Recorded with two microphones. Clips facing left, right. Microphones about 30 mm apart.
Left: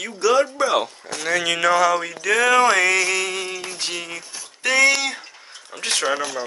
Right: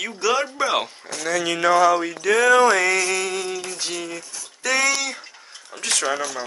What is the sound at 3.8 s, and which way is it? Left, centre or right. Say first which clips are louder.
Speech: left 1 dB; left.